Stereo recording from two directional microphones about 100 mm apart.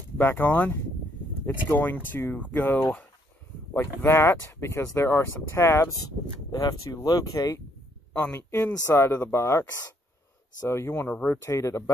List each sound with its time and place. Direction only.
0.2 s speech: 20° left (ahead or behind)
6.5 s speech: 40° left (ahead or behind)
10.7 s speech: 25° left (ahead or behind)